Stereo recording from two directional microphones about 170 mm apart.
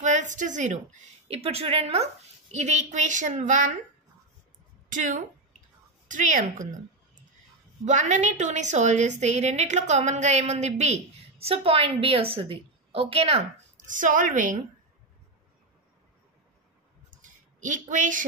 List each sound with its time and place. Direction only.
0.0 s a woman's voice: 45° right (ahead or behind)
4.8 s a woman's voice: 50° right (ahead or behind)
7.8 s a woman's voice: 45° right (ahead or behind)
13.8 s a woman's voice: 50° right (ahead or behind)
17.2 s a sound: 50° right (ahead or behind)